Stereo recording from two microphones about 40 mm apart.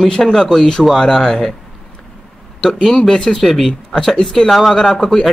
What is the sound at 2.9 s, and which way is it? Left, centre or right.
Speech, centre.